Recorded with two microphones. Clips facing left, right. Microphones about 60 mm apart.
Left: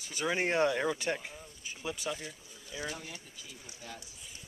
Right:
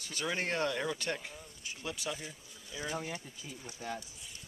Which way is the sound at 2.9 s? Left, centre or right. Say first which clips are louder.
Right 6 dB; right.